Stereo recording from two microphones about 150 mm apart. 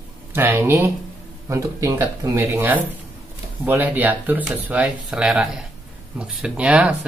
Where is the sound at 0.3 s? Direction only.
15° right (ahead or behind).